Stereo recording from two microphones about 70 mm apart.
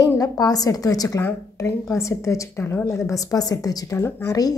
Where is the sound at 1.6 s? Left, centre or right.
Left.